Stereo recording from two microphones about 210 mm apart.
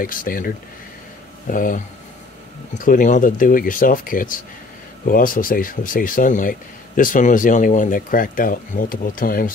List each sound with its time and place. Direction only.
0.0 s speech: 40° left (ahead or behind)
1.5 s speech: 40° left (ahead or behind)
2.8 s speech: 40° left (ahead or behind)